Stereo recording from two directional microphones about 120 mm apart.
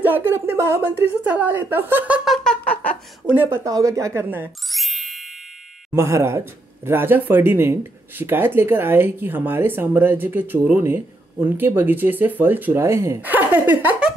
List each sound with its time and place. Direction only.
0.0 s speech: 15° right (ahead or behind); by 3.0 s 10° left (ahead or behind)
3.3 s speech: 20° right (ahead or behind)
4.6 s music: centre (ahead or behind)
5.9 s speech: 20° right (ahead or behind)